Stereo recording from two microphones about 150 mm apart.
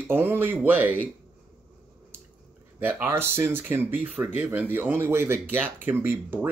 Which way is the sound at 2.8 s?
15° right (ahead or behind).